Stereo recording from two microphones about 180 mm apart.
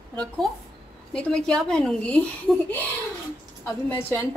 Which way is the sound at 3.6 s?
10° left (ahead or behind).